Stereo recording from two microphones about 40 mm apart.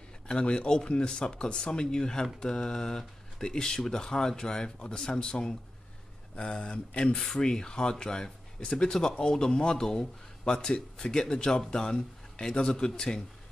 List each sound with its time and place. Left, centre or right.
0.3 s speech: left
7.2 s speech: centre